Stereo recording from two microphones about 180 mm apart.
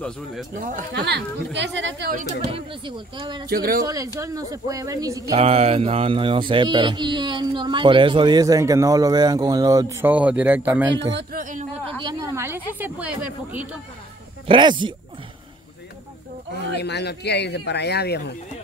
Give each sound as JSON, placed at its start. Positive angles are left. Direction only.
{"t": 0.6, "sound": "speech", "side_deg": -45}
{"t": 0.9, "sound": "speech", "side_deg": -70}
{"t": 3.2, "sound": "speech", "side_deg": -25}
{"t": 3.4, "sound": "speech", "side_deg": -55}
{"t": 3.8, "sound": "speech", "side_deg": -20}
{"t": 5.3, "sound": "speech", "side_deg": -35}
{"t": 12.0, "sound": "a woman's voice", "side_deg": -20}
{"t": 14.5, "sound": "speech", "side_deg": -25}
{"t": 16.5, "sound": "speech", "side_deg": 70}